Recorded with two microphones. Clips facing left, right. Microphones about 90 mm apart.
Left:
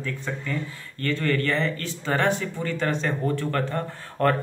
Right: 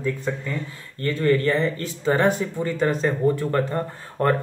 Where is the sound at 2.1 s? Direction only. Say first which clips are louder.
Right 1 dB; 15° right (ahead or behind).